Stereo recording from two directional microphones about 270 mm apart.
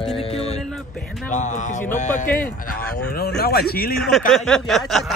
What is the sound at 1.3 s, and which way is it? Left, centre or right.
Speech, left.